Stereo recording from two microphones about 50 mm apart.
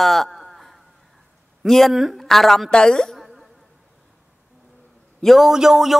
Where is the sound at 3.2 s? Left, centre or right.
Centre.